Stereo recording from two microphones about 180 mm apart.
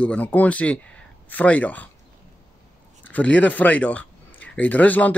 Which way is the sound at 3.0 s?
10° left (ahead or behind).